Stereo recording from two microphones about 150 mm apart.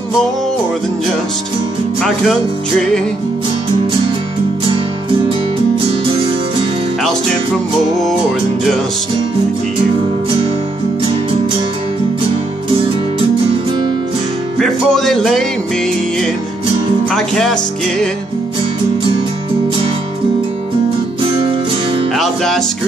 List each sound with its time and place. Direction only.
14.6 s music: centre (ahead or behind)
17.1 s speech: 5° left (ahead or behind)
21.2 s music: 35° right (ahead or behind)
22.1 s music: centre (ahead or behind)